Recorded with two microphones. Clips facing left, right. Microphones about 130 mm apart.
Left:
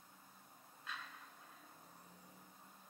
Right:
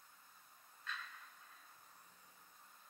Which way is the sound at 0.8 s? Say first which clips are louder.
Right 1 dB; 20° left (ahead or behind).